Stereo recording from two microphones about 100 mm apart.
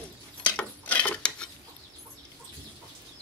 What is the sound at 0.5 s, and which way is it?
Dishes, 15° left (ahead or behind).